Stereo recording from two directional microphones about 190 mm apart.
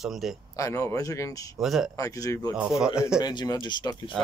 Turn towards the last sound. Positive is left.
turn(degrees=25)  # may be behind; listen again after turning